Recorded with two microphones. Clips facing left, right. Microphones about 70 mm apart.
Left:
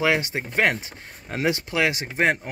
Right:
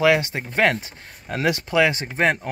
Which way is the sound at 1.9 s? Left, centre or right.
Centre.